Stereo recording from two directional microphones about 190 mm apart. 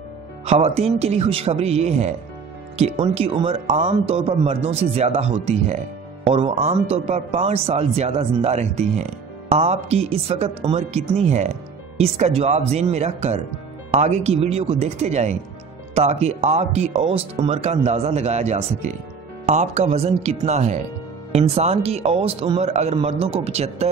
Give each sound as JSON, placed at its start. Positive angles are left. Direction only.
{"t": 0.5, "sound": "speech", "side_deg": -35}